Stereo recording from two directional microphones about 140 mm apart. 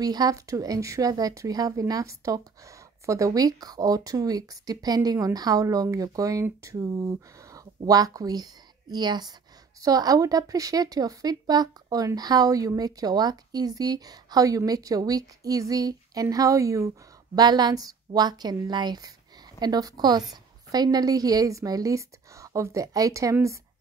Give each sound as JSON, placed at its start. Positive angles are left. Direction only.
{"t": 0.0, "sound": "speech", "side_deg": -25}